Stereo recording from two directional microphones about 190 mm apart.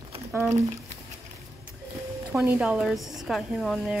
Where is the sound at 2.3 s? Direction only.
5° right (ahead or behind).